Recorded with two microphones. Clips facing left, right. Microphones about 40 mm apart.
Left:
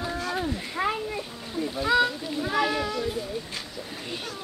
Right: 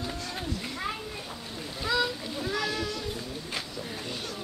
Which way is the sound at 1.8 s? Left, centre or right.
Centre.